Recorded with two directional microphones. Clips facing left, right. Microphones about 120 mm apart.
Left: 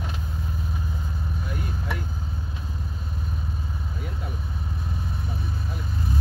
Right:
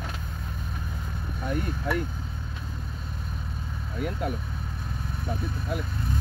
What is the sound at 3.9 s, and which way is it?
Speech, 60° right (ahead or behind).